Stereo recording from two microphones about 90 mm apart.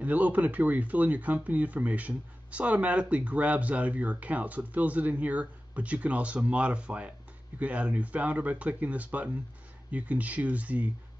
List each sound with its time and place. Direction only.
0.0 s speech: 15° right (ahead or behind)